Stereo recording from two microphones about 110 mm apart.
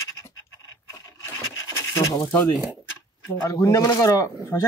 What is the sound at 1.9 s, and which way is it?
Goat, 30° left (ahead or behind).